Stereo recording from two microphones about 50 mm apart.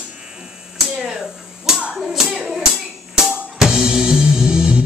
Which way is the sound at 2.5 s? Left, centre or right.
Centre.